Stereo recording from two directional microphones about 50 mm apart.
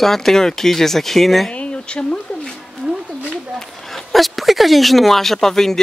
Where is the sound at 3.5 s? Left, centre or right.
Centre.